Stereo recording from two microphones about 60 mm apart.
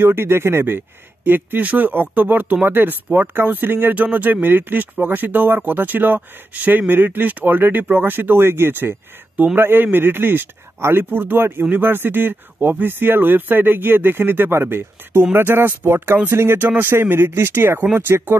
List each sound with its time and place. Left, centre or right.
0.0 s speech: right